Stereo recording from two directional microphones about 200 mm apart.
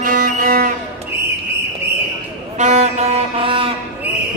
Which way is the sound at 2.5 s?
35° right (ahead or behind).